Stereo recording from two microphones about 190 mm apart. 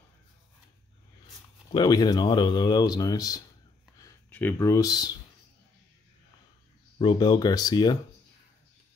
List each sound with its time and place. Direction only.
1.7 s speech: 20° left (ahead or behind)
7.0 s speech: 25° left (ahead or behind)